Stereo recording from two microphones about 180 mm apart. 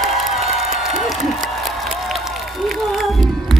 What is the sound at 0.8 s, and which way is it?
Applause, centre (ahead or behind).